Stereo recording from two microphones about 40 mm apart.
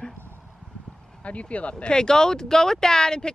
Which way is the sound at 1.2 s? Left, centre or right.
Left.